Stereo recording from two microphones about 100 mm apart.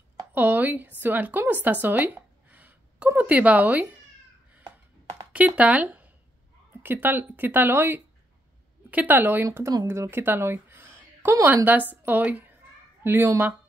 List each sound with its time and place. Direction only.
0.3 s a woman's voice: 20° right (ahead or behind)
5.3 s a woman's voice: 15° right (ahead or behind)